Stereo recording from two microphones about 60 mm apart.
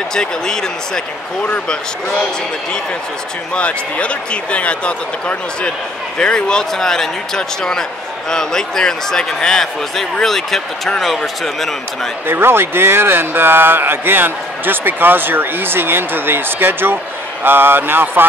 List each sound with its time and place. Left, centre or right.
0.1 s speech: centre
3.5 s speech: left; by 12.1 s centre
12.3 s speech: right